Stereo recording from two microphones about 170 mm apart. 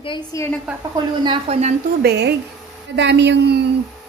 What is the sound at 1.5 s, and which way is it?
Speech, 40° right (ahead or behind).